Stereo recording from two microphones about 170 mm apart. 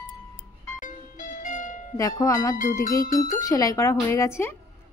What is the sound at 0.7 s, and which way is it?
Music, 50° left (ahead or behind).